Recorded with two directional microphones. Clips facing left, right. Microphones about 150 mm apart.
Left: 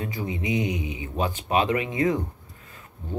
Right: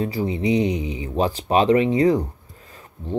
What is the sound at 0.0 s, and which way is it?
Speech, 35° right (ahead or behind).